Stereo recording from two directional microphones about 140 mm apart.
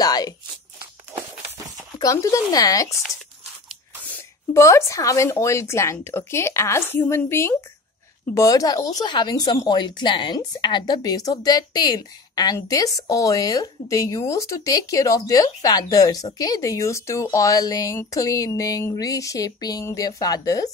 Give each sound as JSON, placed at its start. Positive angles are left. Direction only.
{"t": 0.0, "sound": "speech", "side_deg": 30}
{"t": 2.0, "sound": "speech", "side_deg": 25}
{"t": 4.1, "sound": "speech", "side_deg": 20}